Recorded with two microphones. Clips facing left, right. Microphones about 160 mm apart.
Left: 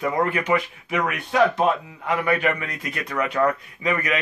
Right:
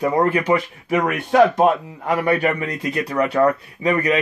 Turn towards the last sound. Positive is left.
turn(degrees=-35)  # may be behind; listen again after turning